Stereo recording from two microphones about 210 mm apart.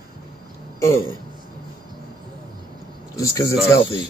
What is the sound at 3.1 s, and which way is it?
Speech, 15° left (ahead or behind).